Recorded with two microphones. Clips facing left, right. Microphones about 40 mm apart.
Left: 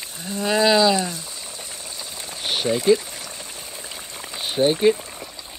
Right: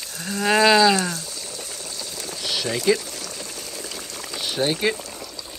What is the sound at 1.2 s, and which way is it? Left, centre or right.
Boiling, left.